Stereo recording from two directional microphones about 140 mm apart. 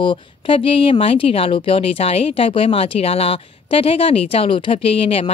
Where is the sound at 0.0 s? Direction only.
40° left (ahead or behind).